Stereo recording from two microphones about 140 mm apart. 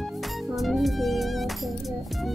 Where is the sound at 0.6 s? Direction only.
Centre (ahead or behind).